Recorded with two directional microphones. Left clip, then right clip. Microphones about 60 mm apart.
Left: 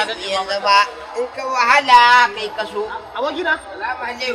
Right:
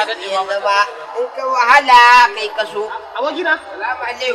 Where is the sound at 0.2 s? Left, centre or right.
Left.